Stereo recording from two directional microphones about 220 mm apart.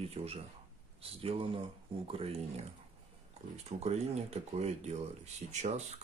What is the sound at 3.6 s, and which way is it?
Speech, 30° right (ahead or behind).